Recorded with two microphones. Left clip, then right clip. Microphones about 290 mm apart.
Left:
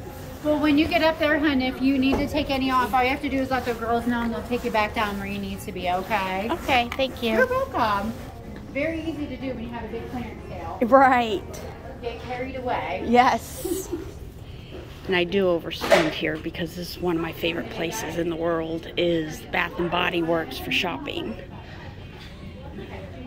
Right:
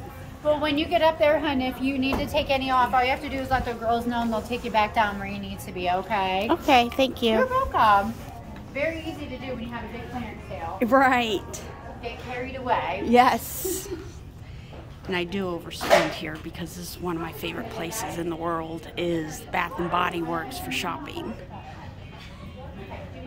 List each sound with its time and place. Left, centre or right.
0.6 s a woman's voice: right
10.8 s speech: centre
12.6 s speech: centre
15.0 s speech: centre